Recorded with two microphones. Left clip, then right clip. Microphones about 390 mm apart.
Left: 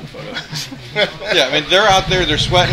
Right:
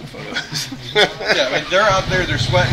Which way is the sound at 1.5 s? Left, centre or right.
Left.